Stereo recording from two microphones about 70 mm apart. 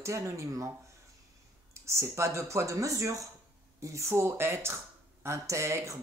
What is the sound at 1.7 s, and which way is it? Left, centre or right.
Speech, right.